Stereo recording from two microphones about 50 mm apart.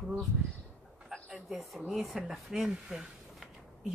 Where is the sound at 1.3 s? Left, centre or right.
Centre.